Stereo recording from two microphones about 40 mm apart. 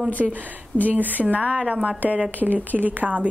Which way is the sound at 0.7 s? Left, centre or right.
Left.